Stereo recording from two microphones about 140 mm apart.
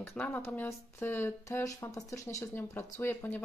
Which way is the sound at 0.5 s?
15° left (ahead or behind).